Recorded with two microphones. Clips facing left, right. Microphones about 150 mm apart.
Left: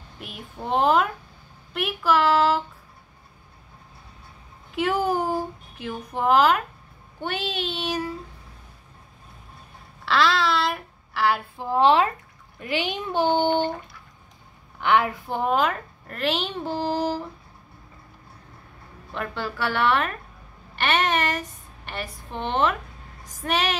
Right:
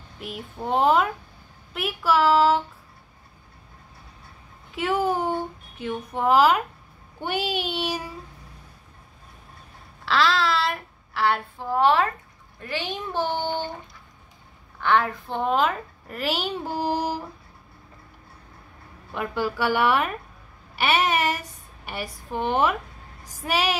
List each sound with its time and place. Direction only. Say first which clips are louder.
0.2 s a child's voice: right 3 dB; centre (ahead or behind)
4.7 s a woman's voice: left 1 dB; centre (ahead or behind)
10.0 s a sound: left 1 dB; centre (ahead or behind)
11.5 s speech: left 3 dB; 20° left (ahead or behind)
14.8 s a child's voice: left 1 dB; 15° left (ahead or behind); by 17.2 s 15° right (ahead or behind)
19.1 s a woman's voice: right 3 dB; 10° right (ahead or behind)